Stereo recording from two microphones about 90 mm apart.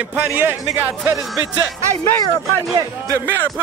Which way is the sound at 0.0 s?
20° right (ahead or behind).